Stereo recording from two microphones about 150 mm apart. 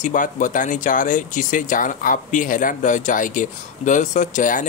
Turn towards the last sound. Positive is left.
turn(degrees=60)  # may be behind; listen again after turning